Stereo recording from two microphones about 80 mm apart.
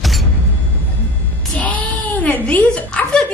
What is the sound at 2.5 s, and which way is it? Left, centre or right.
Speech, centre.